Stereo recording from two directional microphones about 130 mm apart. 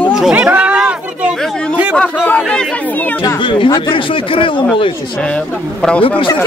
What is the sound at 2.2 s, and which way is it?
Chatter, 10° left (ahead or behind).